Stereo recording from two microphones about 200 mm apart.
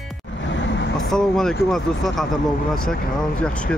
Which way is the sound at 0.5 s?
60° left (ahead or behind).